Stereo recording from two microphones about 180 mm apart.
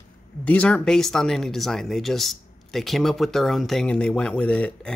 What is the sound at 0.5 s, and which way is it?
Speech, 10° left (ahead or behind).